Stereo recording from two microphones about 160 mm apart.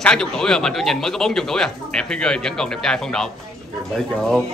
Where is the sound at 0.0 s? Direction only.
5° left (ahead or behind).